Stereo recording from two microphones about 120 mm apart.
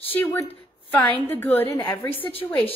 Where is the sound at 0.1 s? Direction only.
15° left (ahead or behind).